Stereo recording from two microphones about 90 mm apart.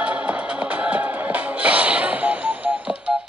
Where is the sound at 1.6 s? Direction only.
15° right (ahead or behind).